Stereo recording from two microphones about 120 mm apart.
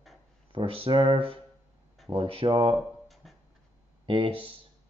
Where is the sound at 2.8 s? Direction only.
Centre (ahead or behind).